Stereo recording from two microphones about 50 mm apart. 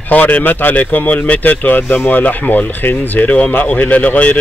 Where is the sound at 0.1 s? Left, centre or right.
Left.